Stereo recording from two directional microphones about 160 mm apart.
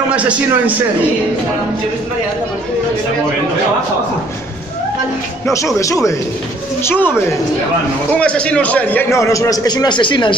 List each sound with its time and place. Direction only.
0.1 s a man's voice: 10° right (ahead or behind)
5.8 s a man's voice: 20° left (ahead or behind)